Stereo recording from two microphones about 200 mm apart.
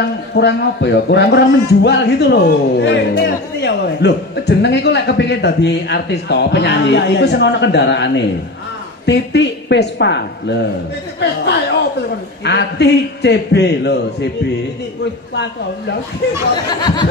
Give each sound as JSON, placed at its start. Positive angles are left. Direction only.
{"t": 0.3, "sound": "a man's voice", "side_deg": 60}
{"t": 12.4, "sound": "a man's voice", "side_deg": 60}
{"t": 16.8, "sound": "a sound", "side_deg": 20}